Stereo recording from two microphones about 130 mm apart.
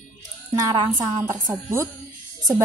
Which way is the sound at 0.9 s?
20° right (ahead or behind).